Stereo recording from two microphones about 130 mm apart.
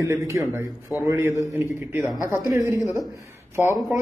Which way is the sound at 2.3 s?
20° right (ahead or behind).